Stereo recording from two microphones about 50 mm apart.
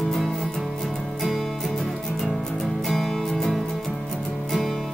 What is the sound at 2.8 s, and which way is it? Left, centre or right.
Music, centre.